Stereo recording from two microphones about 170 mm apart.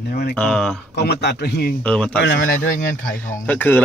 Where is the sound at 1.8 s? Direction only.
5° left (ahead or behind).